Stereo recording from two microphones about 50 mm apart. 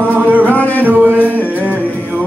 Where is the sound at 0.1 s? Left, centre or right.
Right.